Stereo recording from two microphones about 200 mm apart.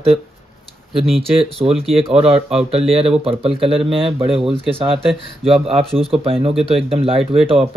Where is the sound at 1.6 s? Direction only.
30° right (ahead or behind).